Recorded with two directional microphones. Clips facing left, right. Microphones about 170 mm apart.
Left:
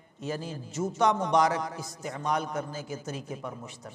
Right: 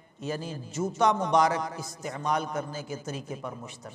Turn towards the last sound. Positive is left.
turn(degrees=-25)  # may be behind; listen again after turning